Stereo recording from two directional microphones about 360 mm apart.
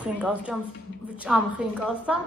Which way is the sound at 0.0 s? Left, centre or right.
Centre.